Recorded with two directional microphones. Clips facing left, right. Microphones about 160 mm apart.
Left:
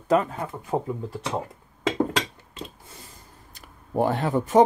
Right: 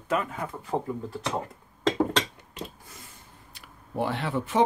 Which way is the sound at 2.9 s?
40° left (ahead or behind).